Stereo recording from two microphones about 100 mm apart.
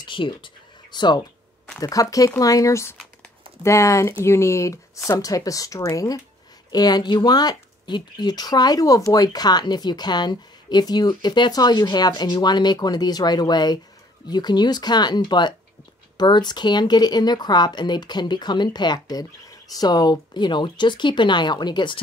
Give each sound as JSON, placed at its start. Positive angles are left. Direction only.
{"t": 0.0, "sound": "speech", "side_deg": 55}
{"t": 1.8, "sound": "speech", "side_deg": 35}